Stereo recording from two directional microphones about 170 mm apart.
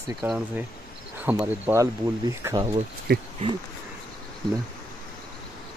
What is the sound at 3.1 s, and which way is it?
Speech, 70° right (ahead or behind).